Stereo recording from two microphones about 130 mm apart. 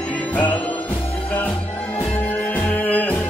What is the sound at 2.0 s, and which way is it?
Music, 10° left (ahead or behind).